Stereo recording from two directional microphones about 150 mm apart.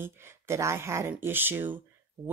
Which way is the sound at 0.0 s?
15° right (ahead or behind).